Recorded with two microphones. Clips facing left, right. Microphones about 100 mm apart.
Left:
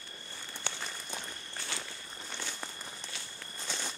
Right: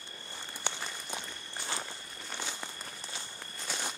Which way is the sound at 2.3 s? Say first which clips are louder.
Right 3 dB; 15° right (ahead or behind).